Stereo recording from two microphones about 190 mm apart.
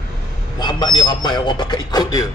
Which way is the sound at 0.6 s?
20° left (ahead or behind).